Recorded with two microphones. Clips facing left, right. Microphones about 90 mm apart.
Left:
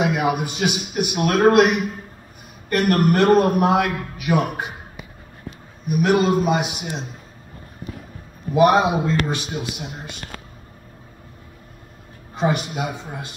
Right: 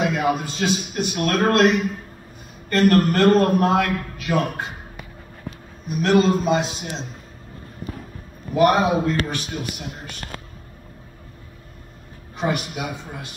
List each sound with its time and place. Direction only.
0.0 s a man's voice: 15° left (ahead or behind)
8.5 s a man's voice: 20° left (ahead or behind)
12.4 s a man's voice: 25° left (ahead or behind)